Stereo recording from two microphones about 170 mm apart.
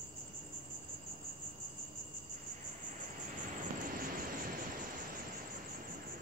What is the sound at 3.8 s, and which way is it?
Vehicle, 55° right (ahead or behind).